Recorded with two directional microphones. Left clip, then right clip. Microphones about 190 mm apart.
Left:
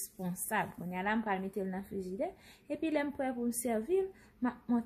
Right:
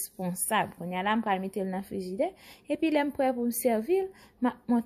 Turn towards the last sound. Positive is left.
turn(degrees=-40)  # may be behind; listen again after turning